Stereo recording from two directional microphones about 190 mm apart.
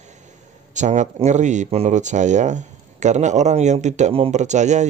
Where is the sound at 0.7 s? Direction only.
40° right (ahead or behind).